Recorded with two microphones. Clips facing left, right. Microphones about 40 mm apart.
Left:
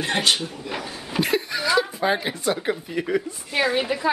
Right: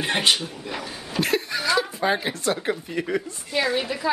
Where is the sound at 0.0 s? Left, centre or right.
Centre.